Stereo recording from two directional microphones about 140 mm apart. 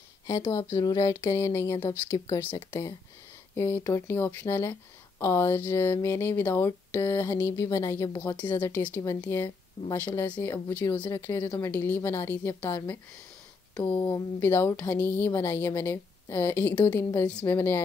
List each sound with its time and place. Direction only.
0.3 s speech: 20° left (ahead or behind)
13.9 s speech: 20° left (ahead or behind)